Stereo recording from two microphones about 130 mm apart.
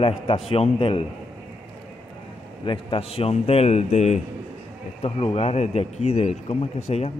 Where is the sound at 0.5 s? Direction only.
45° left (ahead or behind).